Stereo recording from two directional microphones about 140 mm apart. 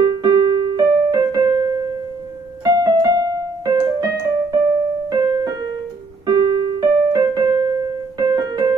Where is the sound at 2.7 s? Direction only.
25° right (ahead or behind).